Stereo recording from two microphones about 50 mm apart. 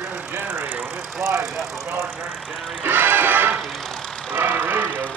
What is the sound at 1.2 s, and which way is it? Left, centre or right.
Speech, right.